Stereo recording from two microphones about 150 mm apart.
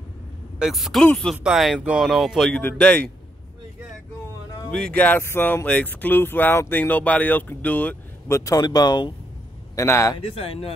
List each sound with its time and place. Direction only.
0.6 s speech: centre (ahead or behind)
4.6 s a man's voice: 10° left (ahead or behind)
10.1 s speech: 40° left (ahead or behind)